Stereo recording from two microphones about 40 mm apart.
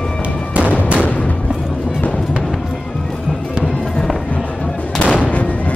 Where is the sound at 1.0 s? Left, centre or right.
Left.